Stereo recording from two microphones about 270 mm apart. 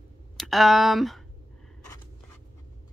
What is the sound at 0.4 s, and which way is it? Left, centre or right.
Speech, centre.